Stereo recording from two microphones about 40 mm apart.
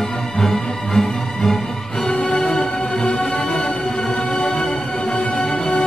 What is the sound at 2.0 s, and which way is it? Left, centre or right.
Music, left.